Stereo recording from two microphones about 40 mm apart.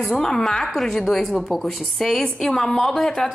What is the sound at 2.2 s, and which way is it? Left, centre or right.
A woman's voice, centre.